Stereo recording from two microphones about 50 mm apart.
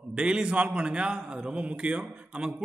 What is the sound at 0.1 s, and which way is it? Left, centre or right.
A man's voice, centre.